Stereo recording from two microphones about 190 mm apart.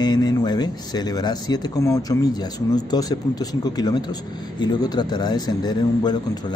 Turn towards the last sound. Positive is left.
turn(degrees=20)  # may be behind; listen again after turning